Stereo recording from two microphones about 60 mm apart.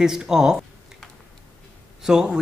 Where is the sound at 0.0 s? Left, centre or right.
Centre.